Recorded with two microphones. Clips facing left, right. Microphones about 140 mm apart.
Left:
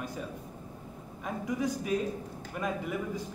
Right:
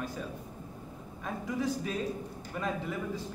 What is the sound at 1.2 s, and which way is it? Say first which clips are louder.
Speech: left 1 dB; 15° left (ahead or behind).